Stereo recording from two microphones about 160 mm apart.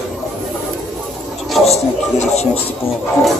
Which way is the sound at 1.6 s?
40° left (ahead or behind).